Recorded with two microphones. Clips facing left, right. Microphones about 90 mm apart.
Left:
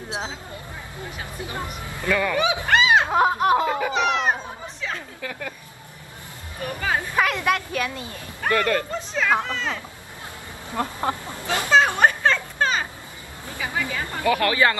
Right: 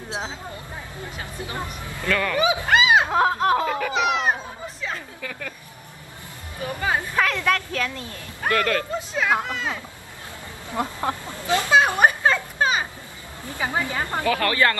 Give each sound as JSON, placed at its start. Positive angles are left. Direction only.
{"t": 0.1, "sound": "speech", "side_deg": 20}
{"t": 1.4, "sound": "speech", "side_deg": 20}
{"t": 2.3, "sound": "speech", "side_deg": 0}
{"t": 2.7, "sound": "snicker", "side_deg": -5}
{"t": 3.1, "sound": "speech", "side_deg": 15}
{"t": 3.9, "sound": "a sound", "side_deg": -5}
{"t": 5.2, "sound": "speech", "side_deg": 10}
{"t": 6.6, "sound": "speech", "side_deg": -15}
{"t": 7.2, "sound": "a child's voice", "side_deg": 15}
{"t": 9.1, "sound": "speech", "side_deg": -10}
{"t": 11.0, "sound": "speech", "side_deg": 15}
{"t": 11.7, "sound": "children playing", "side_deg": -10}
{"t": 13.6, "sound": "speech", "side_deg": -25}
{"t": 14.2, "sound": "speech", "side_deg": 15}